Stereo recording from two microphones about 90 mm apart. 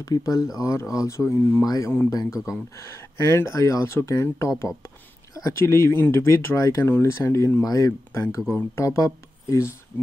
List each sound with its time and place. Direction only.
0.0 s speech: 40° left (ahead or behind)
7.6 s speech: 40° left (ahead or behind)